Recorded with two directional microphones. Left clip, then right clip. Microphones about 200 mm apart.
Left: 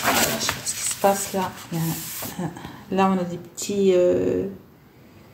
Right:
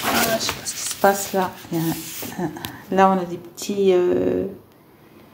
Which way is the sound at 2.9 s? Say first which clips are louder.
Right 5 dB; 5° right (ahead or behind).